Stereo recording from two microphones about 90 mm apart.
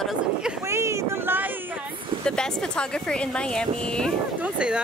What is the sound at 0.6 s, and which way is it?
Speech, 30° right (ahead or behind).